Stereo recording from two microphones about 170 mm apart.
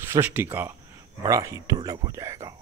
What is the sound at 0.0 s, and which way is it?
Speech, 15° right (ahead or behind).